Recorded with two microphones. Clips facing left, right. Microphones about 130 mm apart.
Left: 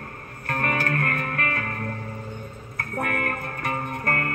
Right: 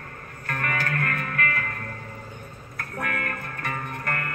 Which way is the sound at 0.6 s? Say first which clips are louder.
Left 3 dB; 35° left (ahead or behind).